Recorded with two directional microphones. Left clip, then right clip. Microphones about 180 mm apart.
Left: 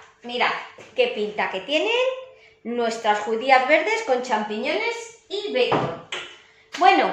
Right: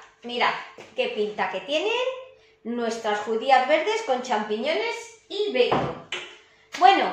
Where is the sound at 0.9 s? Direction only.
15° left (ahead or behind).